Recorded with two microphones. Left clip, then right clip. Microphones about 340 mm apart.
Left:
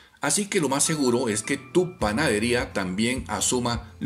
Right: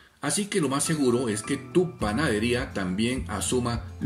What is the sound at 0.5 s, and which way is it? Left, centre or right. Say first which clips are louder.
Speech: left 1 dB; centre.